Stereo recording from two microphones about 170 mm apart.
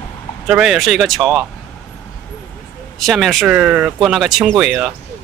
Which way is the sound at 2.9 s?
Centre (ahead or behind).